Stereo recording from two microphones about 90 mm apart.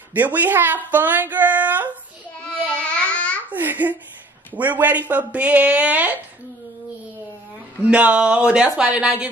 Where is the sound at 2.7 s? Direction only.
10° left (ahead or behind).